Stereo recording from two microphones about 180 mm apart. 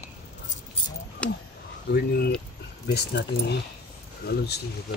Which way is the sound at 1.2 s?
5° left (ahead or behind).